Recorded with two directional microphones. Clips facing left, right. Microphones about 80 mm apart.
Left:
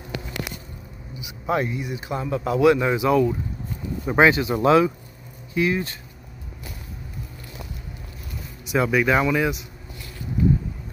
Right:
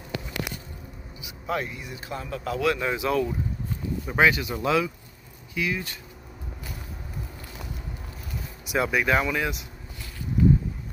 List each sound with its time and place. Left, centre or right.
1.2 s a man's voice: left; by 3.3 s centre
4.0 s speech: left
8.6 s speech: centre